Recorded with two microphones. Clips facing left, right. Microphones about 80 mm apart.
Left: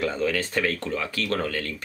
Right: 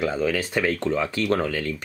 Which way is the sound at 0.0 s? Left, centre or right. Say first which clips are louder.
Right 2 dB; centre.